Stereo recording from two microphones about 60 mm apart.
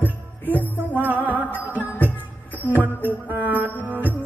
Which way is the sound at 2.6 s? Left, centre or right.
Right.